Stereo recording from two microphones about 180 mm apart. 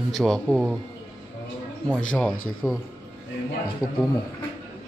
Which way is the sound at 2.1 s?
5° left (ahead or behind).